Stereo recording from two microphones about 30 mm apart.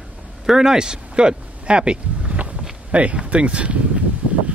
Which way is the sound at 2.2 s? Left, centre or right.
Right.